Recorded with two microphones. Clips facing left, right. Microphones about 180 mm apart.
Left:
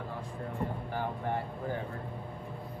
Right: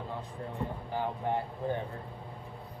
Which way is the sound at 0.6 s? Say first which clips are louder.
Right 1 dB; 15° right (ahead or behind).